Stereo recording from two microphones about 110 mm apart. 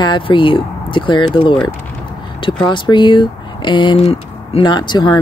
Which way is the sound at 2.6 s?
45° left (ahead or behind).